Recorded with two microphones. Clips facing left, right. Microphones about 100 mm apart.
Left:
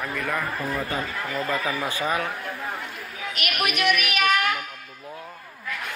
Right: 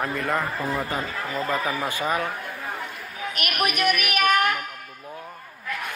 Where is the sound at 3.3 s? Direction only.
45° right (ahead or behind).